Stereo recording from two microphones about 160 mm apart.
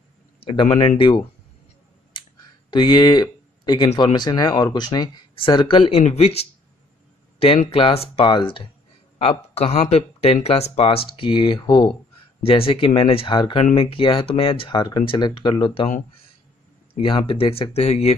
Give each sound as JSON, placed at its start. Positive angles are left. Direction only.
{"t": 0.4, "sound": "a sound", "side_deg": 30}
{"t": 0.7, "sound": "speech", "side_deg": 35}
{"t": 2.7, "sound": "speech", "side_deg": 30}
{"t": 17.0, "sound": "speech", "side_deg": 30}